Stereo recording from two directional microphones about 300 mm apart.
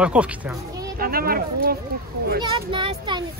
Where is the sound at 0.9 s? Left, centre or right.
Right.